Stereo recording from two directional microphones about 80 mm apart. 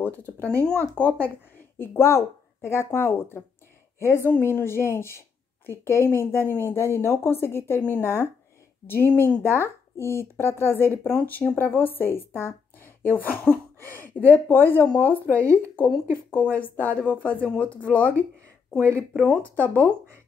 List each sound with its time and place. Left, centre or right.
0.0 s speech: left
1.8 s speech: left